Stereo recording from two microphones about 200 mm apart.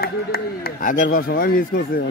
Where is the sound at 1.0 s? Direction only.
50° left (ahead or behind).